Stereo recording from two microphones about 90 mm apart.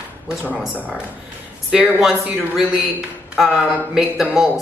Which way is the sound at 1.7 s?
5° right (ahead or behind).